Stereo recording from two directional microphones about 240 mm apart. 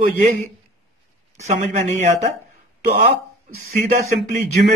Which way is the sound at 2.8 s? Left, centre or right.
Right.